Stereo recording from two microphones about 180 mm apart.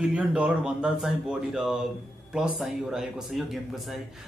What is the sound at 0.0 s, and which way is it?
A man's voice, 5° right (ahead or behind).